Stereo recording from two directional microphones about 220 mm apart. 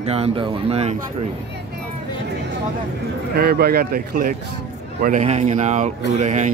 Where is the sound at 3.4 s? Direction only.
45° right (ahead or behind).